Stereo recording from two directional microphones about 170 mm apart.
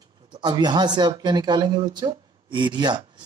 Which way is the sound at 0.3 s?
25° right (ahead or behind).